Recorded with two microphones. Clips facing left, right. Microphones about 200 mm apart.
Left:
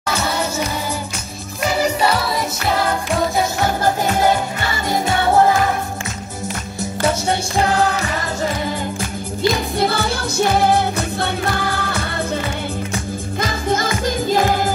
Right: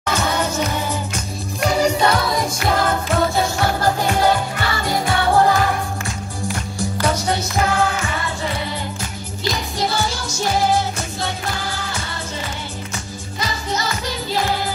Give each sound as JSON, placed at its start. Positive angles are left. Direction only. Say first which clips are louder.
{"t": 0.0, "sound": "music", "louder": "even", "side_deg": 10}
{"t": 4.0, "sound": "music", "louder": "left 1 dB", "side_deg": 20}
{"t": 6.4, "sound": "music", "louder": "right 1 dB", "side_deg": 25}
{"t": 9.5, "sound": "music", "louder": "left 3 dB", "side_deg": 55}
{"t": 13.4, "sound": "music", "louder": "left 4 dB", "side_deg": 50}